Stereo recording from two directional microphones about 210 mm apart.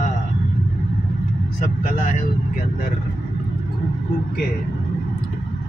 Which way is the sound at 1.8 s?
40° left (ahead or behind).